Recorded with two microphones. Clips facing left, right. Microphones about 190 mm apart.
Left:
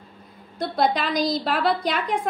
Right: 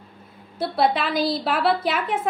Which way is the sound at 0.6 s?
5° right (ahead or behind).